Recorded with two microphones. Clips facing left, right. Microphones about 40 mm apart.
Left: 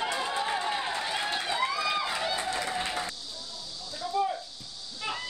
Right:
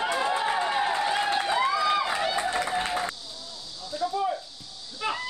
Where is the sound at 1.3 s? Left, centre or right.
Right.